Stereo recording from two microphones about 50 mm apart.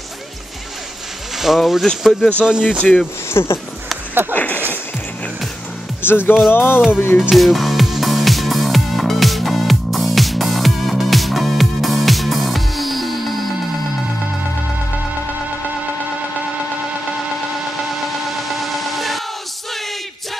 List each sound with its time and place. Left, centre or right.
1.3 s speech: centre
2.4 s speech: centre
2.8 s speech: left
3.3 s speech: left
4.3 s speech: left
6.0 s speech: left
7.3 s music: centre
17.6 s music: centre